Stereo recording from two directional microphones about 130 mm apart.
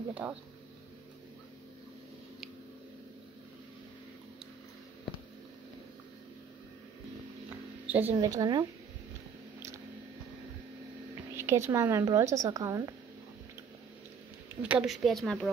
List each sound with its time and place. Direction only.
0.1 s speech: 10° right (ahead or behind)
7.8 s a woman's voice: 15° right (ahead or behind)
8.2 s speech: 30° right (ahead or behind)
11.3 s speech: 20° right (ahead or behind)
14.6 s a woman's voice: 10° right (ahead or behind)